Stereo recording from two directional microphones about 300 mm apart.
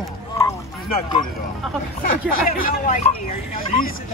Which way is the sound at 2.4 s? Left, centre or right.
Left.